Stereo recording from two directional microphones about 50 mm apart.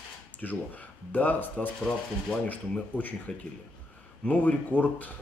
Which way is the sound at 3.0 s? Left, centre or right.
Left.